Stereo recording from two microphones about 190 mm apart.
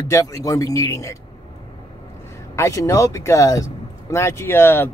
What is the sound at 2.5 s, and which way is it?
Speech, 15° left (ahead or behind).